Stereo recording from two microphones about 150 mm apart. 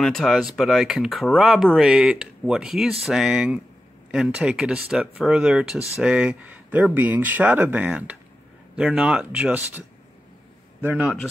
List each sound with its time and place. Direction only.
0.0 s speech: centre (ahead or behind)